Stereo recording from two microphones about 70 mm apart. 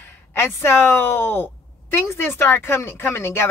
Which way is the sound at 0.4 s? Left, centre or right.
Left.